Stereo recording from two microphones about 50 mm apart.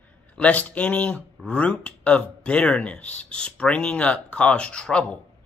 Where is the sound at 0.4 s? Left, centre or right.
Left.